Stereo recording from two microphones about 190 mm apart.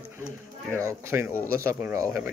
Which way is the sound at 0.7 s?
15° right (ahead or behind).